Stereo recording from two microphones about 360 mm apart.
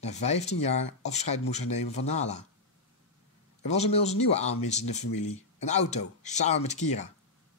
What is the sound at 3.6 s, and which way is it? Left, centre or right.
Speech, centre.